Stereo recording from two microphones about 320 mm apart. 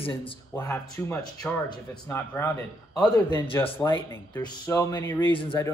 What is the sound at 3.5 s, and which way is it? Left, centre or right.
Speech, centre.